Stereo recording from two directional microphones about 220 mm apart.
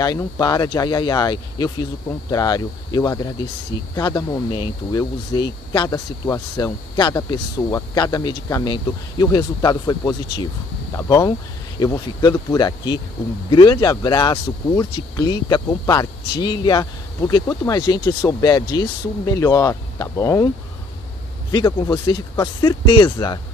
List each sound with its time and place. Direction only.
0.0 s speech: 15° left (ahead or behind)
21.5 s speech: 20° left (ahead or behind)